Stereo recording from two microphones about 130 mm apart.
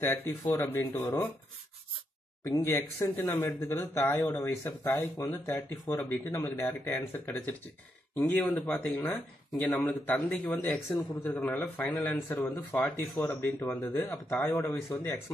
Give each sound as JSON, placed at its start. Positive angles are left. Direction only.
{"t": 0.0, "sound": "speech", "side_deg": 20}
{"t": 2.4, "sound": "speech", "side_deg": 20}
{"t": 8.1, "sound": "speech", "side_deg": 15}